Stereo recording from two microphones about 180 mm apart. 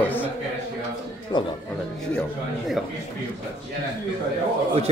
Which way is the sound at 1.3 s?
25° left (ahead or behind).